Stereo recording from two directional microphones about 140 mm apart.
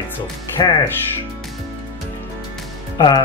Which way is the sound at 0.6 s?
35° left (ahead or behind).